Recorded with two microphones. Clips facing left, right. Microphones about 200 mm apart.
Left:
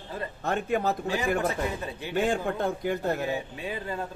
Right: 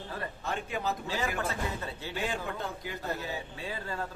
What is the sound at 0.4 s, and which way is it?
Speech, 50° left (ahead or behind).